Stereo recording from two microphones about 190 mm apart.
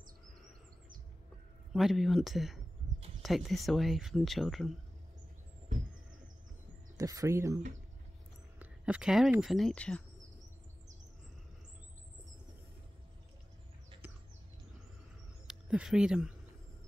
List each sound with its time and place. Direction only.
1.7 s speech: centre (ahead or behind)
7.0 s speech: 15° right (ahead or behind)
8.5 s speech: 5° right (ahead or behind)
15.4 s speech: 5° right (ahead or behind)